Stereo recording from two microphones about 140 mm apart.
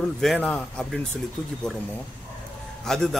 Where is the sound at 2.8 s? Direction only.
5° left (ahead or behind).